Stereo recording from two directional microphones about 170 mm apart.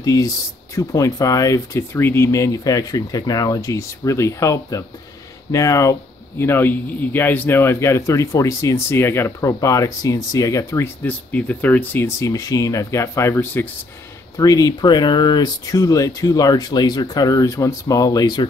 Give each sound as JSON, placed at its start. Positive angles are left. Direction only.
{"t": 0.0, "sound": "speech", "side_deg": 20}